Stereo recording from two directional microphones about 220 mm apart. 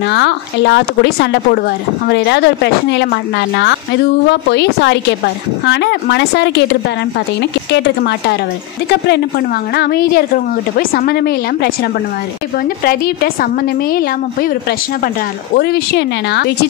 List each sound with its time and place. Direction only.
0.0 s a woman's voice: 50° left (ahead or behind)
9.8 s a woman's voice: 45° left (ahead or behind)
15.5 s a woman's voice: 50° left (ahead or behind)